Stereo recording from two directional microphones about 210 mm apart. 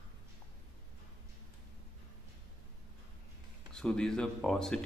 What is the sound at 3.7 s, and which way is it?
Speech, 5° left (ahead or behind).